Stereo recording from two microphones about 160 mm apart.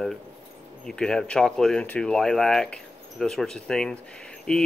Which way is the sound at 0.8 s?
5° left (ahead or behind).